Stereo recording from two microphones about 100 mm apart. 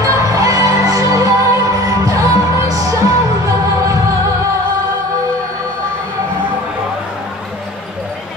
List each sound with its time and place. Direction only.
0.0 s music: 35° right (ahead or behind)